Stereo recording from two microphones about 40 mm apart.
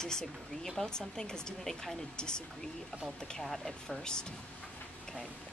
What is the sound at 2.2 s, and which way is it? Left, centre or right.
Speech, left.